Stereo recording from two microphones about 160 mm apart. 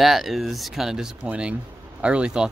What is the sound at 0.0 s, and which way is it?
Speech, centre (ahead or behind).